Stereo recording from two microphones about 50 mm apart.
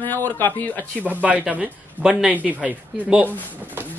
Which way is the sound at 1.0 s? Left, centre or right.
Right.